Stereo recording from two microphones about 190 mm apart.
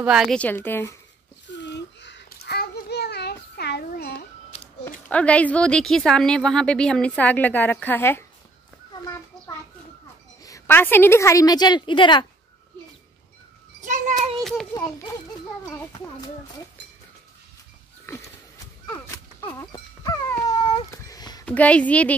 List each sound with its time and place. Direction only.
0.0 s a woman's voice: 5° right (ahead or behind)
1.5 s a sound: 65° left (ahead or behind)
5.0 s a woman's voice: 5° left (ahead or behind)
10.4 s a woman's voice: 15° left (ahead or behind)
13.8 s a sound: 40° right (ahead or behind)
14.7 s a child's voice: 20° left (ahead or behind)
18.1 s sniff: 15° left (ahead or behind)
18.9 s a sound: 15° left (ahead or behind)
21.5 s a woman's voice: 5° left (ahead or behind)